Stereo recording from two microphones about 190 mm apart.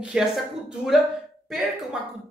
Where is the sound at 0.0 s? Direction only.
5° right (ahead or behind).